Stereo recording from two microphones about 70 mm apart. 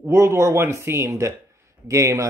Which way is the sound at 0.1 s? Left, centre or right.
Right.